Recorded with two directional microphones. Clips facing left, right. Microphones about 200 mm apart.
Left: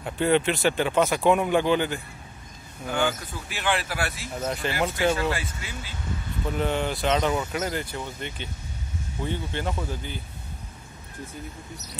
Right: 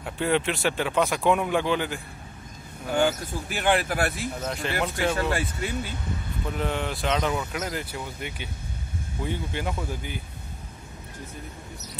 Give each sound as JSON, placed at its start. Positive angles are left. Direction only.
{"t": 0.0, "sound": "speech", "side_deg": 0}
{"t": 2.9, "sound": "speech", "side_deg": -45}
{"t": 4.4, "sound": "speech", "side_deg": 5}
{"t": 5.4, "sound": "speech", "side_deg": -55}
{"t": 6.5, "sound": "speech", "side_deg": 0}